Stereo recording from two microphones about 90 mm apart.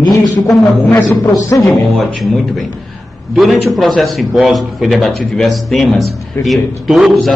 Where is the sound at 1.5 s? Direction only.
35° left (ahead or behind).